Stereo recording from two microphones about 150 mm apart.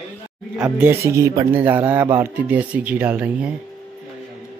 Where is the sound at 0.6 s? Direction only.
10° right (ahead or behind).